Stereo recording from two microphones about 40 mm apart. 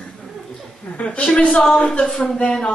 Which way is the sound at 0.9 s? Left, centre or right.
Left.